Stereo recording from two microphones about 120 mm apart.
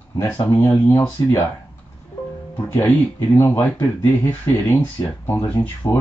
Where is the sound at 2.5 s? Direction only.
20° left (ahead or behind).